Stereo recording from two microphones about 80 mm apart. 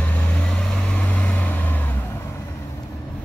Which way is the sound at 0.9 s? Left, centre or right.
Centre.